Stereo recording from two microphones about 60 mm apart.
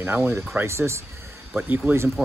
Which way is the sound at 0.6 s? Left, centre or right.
Right.